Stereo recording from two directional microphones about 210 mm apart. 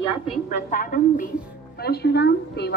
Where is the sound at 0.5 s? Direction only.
35° left (ahead or behind).